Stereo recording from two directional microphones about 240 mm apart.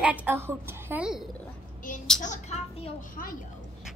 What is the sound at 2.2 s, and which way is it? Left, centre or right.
A child's voice, left.